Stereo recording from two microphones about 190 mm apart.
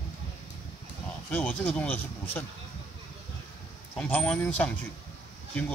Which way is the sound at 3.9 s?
10° left (ahead or behind).